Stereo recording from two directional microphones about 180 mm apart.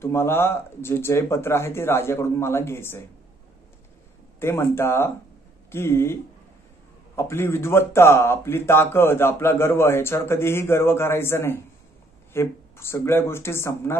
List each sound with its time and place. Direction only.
0.0 s speech: 15° left (ahead or behind)
4.4 s speech: 15° left (ahead or behind)
7.2 s speech: 15° left (ahead or behind)